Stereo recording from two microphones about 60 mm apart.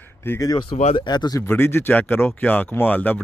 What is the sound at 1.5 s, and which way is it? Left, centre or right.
Speech, left.